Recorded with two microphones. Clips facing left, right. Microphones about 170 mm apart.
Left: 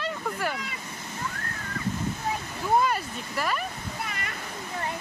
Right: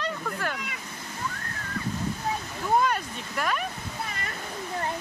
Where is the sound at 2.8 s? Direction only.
5° left (ahead or behind).